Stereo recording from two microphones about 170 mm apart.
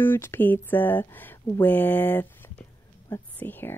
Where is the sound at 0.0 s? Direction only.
15° left (ahead or behind).